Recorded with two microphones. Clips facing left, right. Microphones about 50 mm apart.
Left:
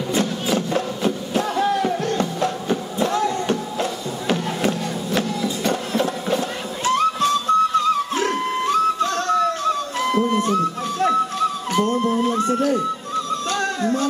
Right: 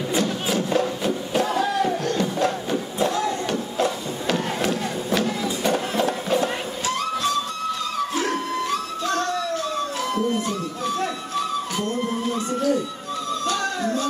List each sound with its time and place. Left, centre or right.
0.7 s music: left
3.1 s a sound: left
5.2 s music: right
6.8 s music: left
11.7 s music: left